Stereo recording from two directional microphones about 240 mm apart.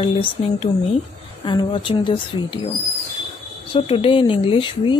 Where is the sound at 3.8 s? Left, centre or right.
Left.